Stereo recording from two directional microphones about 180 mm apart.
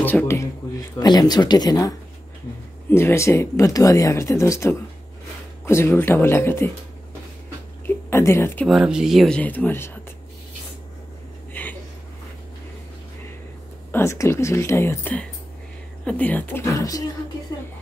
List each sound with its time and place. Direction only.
0.0 s speech: 10° left (ahead or behind)
0.9 s speech: 20° left (ahead or behind)
7.8 s a sound: 15° left (ahead or behind)
8.6 s speech: centre (ahead or behind)
11.6 s a sound: 10° left (ahead or behind)
13.9 s speech: 15° left (ahead or behind)